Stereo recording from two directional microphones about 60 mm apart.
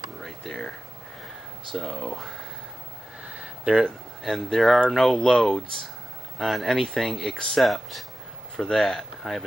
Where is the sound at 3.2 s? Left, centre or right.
Centre.